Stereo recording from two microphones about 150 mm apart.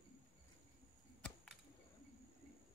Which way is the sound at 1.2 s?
5° left (ahead or behind).